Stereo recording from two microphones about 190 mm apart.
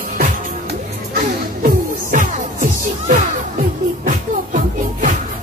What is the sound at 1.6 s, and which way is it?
Music, 45° right (ahead or behind).